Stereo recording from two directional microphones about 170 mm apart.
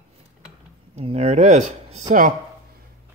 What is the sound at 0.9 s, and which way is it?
Speech, 40° right (ahead or behind).